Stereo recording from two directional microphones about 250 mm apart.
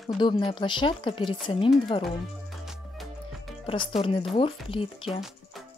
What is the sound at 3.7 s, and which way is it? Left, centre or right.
Speech, left.